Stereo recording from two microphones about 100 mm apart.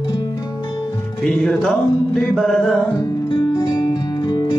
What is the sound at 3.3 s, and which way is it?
Music, 45° left (ahead or behind).